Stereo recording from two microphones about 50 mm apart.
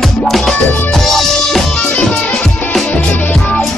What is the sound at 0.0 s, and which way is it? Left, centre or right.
Music, centre.